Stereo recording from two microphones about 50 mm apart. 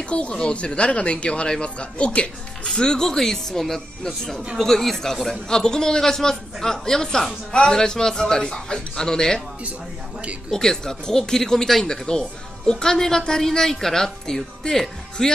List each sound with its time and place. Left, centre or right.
0.0 s speech: left
10.5 s speech: centre